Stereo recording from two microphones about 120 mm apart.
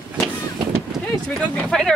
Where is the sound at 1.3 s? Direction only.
5° left (ahead or behind).